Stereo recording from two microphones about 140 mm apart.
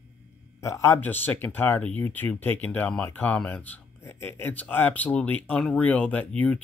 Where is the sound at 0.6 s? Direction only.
20° left (ahead or behind).